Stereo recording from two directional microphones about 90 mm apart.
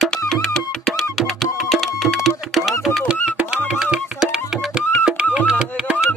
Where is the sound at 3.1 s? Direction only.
10° right (ahead or behind).